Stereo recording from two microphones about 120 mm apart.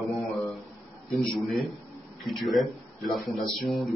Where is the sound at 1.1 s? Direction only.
Centre (ahead or behind).